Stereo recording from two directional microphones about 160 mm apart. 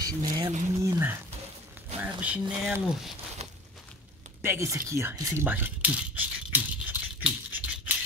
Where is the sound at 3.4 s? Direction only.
45° right (ahead or behind).